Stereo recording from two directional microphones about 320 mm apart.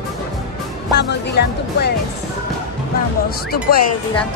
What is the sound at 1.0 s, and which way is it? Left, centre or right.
Speech, left.